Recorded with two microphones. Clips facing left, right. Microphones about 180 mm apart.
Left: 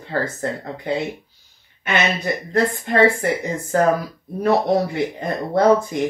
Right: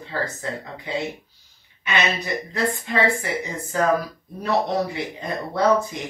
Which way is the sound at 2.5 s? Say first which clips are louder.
Left 5 dB; 55° left (ahead or behind).